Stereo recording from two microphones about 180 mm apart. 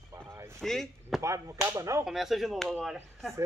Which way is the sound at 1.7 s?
15° right (ahead or behind).